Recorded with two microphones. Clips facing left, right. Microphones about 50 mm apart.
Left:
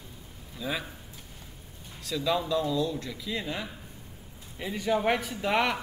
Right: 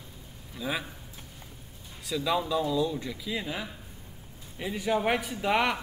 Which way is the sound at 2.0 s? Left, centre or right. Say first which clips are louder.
Even; centre.